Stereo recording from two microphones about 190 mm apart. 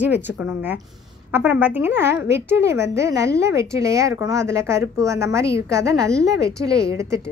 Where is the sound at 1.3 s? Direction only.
10° right (ahead or behind).